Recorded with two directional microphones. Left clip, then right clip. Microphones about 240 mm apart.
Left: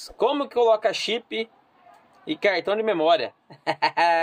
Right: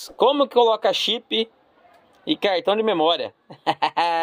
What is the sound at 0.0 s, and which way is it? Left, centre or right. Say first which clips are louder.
Speech: right 5 dB; right.